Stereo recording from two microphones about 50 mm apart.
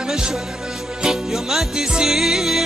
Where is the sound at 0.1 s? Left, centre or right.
Centre.